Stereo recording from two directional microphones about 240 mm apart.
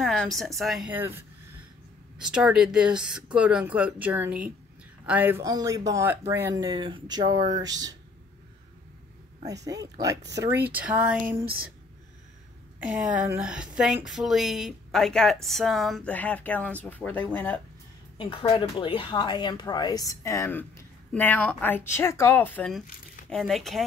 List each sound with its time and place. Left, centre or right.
0.0 s a sound: centre
0.6 s speech: centre
2.1 s speech: centre
9.4 s speech: centre
12.9 s speech: centre
18.1 s speech: centre